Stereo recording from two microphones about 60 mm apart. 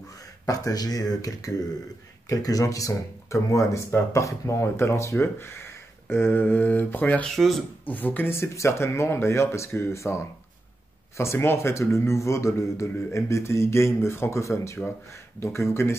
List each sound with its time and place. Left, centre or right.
0.5 s speech: left
7.3 s speech: centre
7.8 s speech: left
8.4 s speech: left